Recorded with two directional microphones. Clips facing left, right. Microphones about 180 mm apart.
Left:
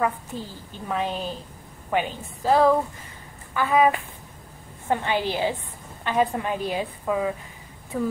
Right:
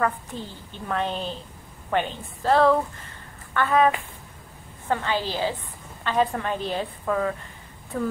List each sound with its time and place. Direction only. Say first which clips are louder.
0.3 s a woman's voice: left 1 dB; 5° left (ahead or behind)
4.8 s a woman's voice: left 1 dB; 20° left (ahead or behind)